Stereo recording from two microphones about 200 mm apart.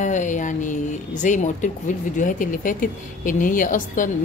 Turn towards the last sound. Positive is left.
turn(degrees=40)  # may be behind; listen again after turning